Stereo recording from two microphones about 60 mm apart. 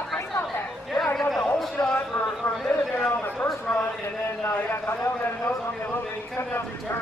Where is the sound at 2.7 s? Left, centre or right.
Left.